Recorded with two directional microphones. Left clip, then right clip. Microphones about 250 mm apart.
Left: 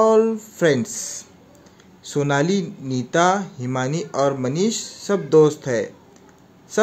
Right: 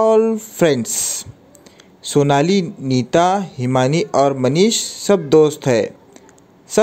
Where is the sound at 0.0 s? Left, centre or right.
Right.